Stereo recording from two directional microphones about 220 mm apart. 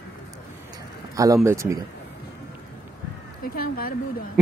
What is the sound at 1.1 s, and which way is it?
Speech, 15° right (ahead or behind).